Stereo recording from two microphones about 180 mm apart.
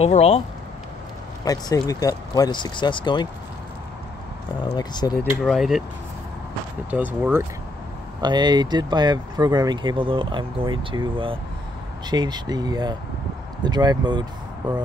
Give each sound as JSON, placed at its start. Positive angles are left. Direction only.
{"t": 0.0, "sound": "speech", "side_deg": 35}
{"t": 1.4, "sound": "speech", "side_deg": 20}
{"t": 4.7, "sound": "speech", "side_deg": 20}
{"t": 5.2, "sound": "speech", "side_deg": -5}
{"t": 6.9, "sound": "speech", "side_deg": -10}
{"t": 8.2, "sound": "speech", "side_deg": -25}